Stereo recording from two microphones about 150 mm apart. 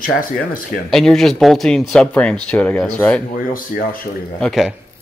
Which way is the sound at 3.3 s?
70° left (ahead or behind).